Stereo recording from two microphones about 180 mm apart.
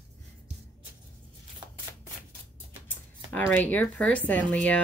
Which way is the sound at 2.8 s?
10° left (ahead or behind).